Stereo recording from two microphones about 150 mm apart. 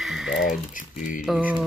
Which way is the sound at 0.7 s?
60° left (ahead or behind).